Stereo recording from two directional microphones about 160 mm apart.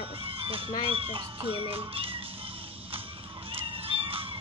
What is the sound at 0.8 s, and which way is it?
Speech, 35° right (ahead or behind).